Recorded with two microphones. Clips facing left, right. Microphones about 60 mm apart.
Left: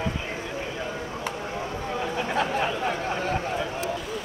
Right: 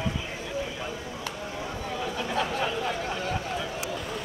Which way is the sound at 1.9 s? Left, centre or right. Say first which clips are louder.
Left 3 dB; left.